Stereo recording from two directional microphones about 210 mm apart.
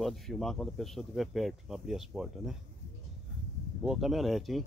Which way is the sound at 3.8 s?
Centre (ahead or behind).